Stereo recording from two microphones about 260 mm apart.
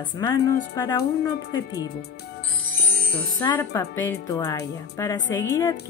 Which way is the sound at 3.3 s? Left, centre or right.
Centre.